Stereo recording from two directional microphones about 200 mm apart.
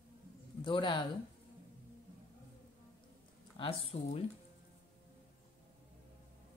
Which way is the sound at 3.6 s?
25° left (ahead or behind).